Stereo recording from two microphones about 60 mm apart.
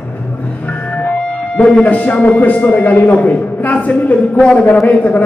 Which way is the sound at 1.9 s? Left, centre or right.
Left.